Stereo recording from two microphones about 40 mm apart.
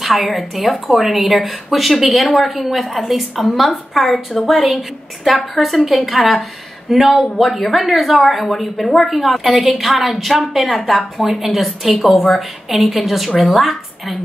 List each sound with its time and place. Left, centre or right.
0.0 s a woman's voice: centre